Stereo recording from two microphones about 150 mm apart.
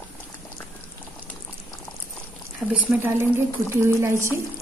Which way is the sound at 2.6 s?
5° right (ahead or behind).